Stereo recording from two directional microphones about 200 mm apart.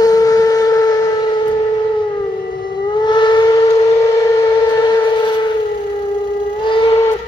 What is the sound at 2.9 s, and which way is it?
Vehicle, 20° left (ahead or behind).